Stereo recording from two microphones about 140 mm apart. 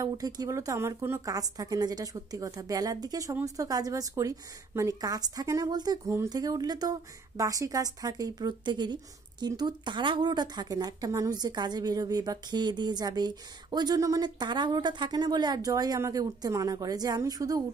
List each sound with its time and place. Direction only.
0.0 s speech: 25° right (ahead or behind)